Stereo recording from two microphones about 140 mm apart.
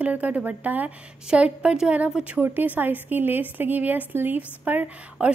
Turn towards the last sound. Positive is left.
turn(degrees=-10)  # may be behind; listen again after turning